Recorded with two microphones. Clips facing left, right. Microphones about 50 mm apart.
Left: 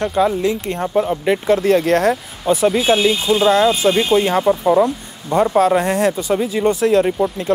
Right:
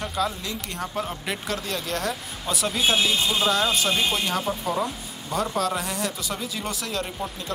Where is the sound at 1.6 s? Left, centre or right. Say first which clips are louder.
Left 15 dB; left.